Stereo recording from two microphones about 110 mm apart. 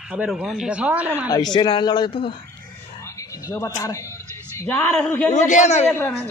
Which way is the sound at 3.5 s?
30° left (ahead or behind).